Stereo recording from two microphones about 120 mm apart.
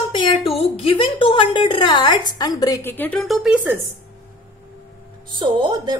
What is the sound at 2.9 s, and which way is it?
Speech, 15° left (ahead or behind).